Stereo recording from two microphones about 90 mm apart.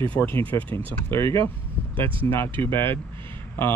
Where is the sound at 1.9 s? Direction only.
75° right (ahead or behind).